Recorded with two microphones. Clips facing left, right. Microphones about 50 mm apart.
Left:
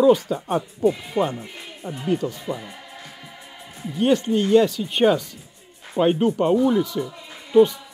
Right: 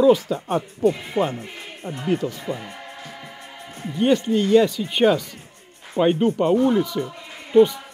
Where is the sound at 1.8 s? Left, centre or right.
Centre.